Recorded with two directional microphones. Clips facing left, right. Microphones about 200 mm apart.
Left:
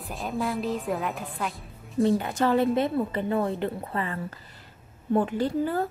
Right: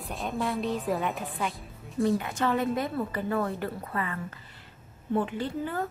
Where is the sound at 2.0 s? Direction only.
35° left (ahead or behind).